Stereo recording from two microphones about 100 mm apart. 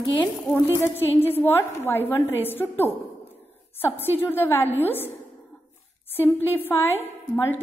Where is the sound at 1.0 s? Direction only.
20° left (ahead or behind).